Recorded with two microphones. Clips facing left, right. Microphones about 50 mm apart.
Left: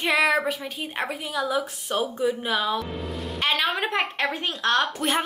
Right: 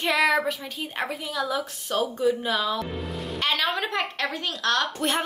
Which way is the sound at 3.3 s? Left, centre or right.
Centre.